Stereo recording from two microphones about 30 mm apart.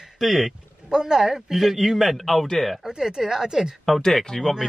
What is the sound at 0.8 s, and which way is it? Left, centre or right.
A man's voice, right.